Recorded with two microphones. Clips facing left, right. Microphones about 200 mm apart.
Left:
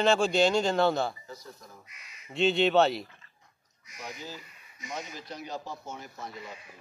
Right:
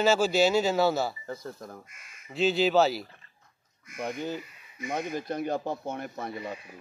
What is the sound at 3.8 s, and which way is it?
Speech, 55° right (ahead or behind).